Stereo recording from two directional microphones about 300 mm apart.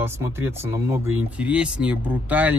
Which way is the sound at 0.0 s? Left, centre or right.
Centre.